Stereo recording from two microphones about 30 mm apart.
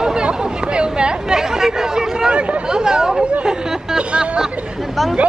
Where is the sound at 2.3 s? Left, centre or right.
Right.